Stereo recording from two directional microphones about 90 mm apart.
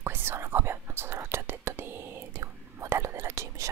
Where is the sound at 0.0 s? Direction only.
25° right (ahead or behind).